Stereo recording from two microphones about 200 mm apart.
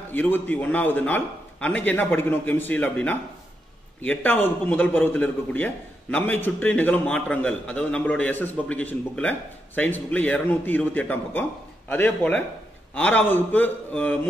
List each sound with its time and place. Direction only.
0.1 s a man's voice: 10° left (ahead or behind)